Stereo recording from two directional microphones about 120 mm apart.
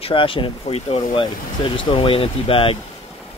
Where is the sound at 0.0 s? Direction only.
45° left (ahead or behind).